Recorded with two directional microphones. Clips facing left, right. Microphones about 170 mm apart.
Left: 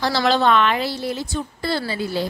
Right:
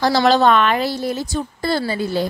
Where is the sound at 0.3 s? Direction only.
45° right (ahead or behind).